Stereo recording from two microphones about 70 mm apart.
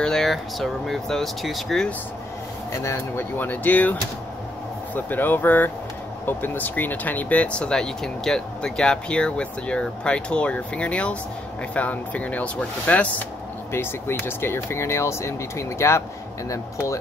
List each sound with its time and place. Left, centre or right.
0.0 s speech: centre
2.7 s speech: left
3.3 s speech: left
13.7 s speech: left